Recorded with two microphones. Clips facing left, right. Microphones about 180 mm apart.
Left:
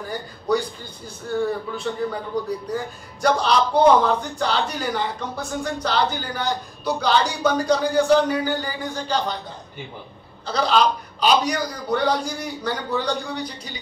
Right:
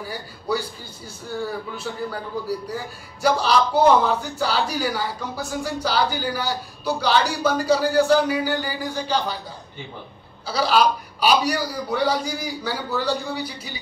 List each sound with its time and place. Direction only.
0.0 s a man's voice: 5° right (ahead or behind)
10.4 s a man's voice: 5° right (ahead or behind)